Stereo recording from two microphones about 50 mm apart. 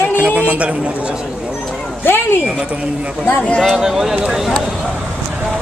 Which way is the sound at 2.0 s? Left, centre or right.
Left.